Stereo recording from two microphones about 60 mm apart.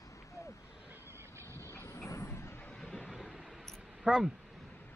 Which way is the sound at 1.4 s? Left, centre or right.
Right.